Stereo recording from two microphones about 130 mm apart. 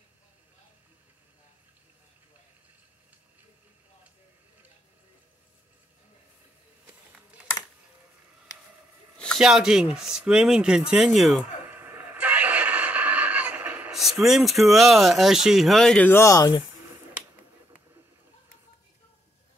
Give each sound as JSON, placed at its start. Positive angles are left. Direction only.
{"t": 9.4, "sound": "speech", "side_deg": -5}
{"t": 11.7, "sound": "a sound", "side_deg": -15}
{"t": 13.9, "sound": "speech", "side_deg": 0}
{"t": 16.1, "sound": "speech", "side_deg": 20}